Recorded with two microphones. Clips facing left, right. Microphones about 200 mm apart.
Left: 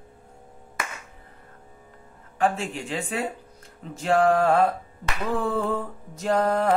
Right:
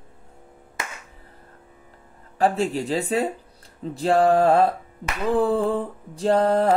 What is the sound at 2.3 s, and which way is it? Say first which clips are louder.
Speech: right 4 dB; 35° right (ahead or behind).